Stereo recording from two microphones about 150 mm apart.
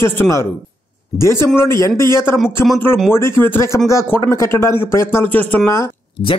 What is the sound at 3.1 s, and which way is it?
Speech, 15° left (ahead or behind).